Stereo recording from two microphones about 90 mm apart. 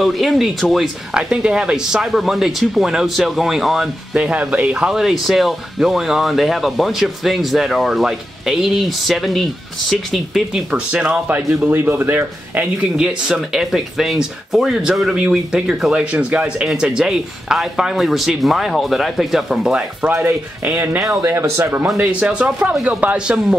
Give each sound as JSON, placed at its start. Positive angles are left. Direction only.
{"t": 0.0, "sound": "speech", "side_deg": 0}
{"t": 4.1, "sound": "speech", "side_deg": -15}
{"t": 10.7, "sound": "speech", "side_deg": -15}
{"t": 12.9, "sound": "speech", "side_deg": -5}
{"t": 20.0, "sound": "speech", "side_deg": -20}
{"t": 21.0, "sound": "speech", "side_deg": -35}
{"t": 22.0, "sound": "speech", "side_deg": -10}